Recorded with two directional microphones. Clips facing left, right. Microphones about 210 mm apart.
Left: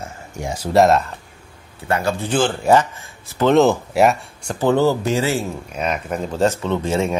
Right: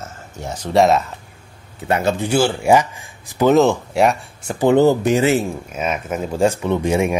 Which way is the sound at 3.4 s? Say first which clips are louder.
Right 1 dB; centre (ahead or behind).